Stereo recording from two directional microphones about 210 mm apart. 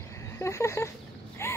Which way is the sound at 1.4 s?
15° left (ahead or behind).